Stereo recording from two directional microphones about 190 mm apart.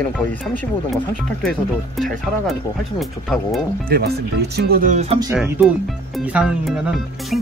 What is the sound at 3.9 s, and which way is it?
Speech, 55° right (ahead or behind).